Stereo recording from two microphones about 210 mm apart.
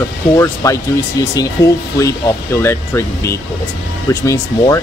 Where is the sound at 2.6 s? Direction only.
10° left (ahead or behind).